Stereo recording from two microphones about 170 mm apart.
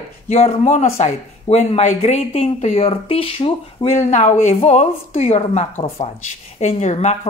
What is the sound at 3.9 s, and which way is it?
A woman's voice, 45° left (ahead or behind).